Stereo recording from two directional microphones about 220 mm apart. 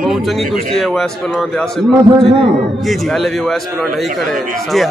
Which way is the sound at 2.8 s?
Centre (ahead or behind).